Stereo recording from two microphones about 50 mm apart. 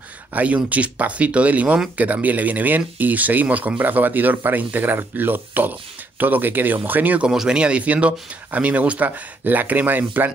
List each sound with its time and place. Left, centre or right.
0.3 s speech: right
7.3 s speech: centre; by 10.3 s right